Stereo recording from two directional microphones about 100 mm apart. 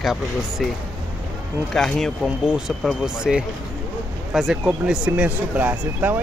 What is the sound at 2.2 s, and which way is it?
Speech, 5° right (ahead or behind).